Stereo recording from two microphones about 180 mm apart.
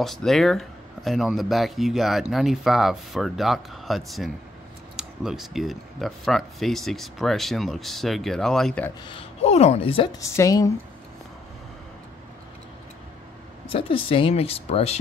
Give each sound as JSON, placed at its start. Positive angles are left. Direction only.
{"t": 0.0, "sound": "speech", "side_deg": 0}
{"t": 9.0, "sound": "speech", "side_deg": 30}
{"t": 10.2, "sound": "a woman's voice", "side_deg": 15}
{"t": 13.7, "sound": "speech", "side_deg": 30}